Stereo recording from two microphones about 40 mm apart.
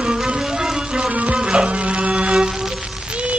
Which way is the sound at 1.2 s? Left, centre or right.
Right.